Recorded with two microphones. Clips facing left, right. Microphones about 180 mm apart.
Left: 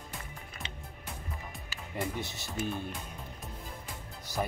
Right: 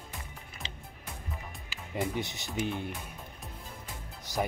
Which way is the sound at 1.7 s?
15° right (ahead or behind).